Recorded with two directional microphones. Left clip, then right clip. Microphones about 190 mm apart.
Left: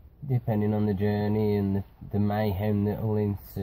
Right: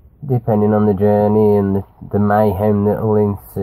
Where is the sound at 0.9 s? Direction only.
35° right (ahead or behind).